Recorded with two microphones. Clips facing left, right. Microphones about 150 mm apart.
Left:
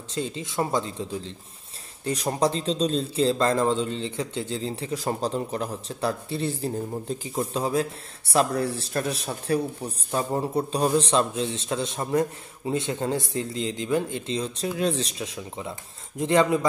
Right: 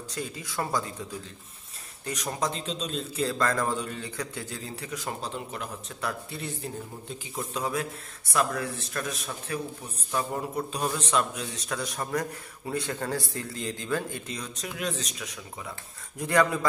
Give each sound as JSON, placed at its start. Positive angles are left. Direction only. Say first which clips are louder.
{"t": 0.1, "sound": "a man's voice", "louder": "left 7 dB", "side_deg": 25}